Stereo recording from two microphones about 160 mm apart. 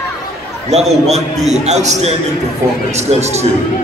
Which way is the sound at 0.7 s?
40° right (ahead or behind).